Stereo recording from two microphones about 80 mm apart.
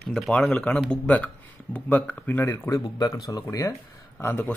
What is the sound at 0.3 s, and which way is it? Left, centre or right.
Speech, centre.